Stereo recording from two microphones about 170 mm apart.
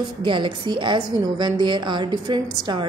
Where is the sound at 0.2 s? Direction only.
30° right (ahead or behind).